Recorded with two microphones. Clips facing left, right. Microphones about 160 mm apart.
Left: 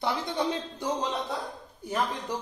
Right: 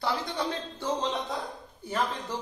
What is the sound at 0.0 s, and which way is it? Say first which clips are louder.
Speech: left 2 dB; 20° left (ahead or behind).